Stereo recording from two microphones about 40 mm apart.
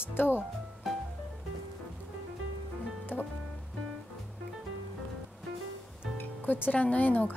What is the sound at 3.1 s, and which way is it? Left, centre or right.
Music, left.